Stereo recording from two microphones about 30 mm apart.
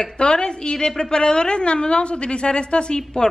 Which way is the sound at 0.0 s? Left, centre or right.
Left.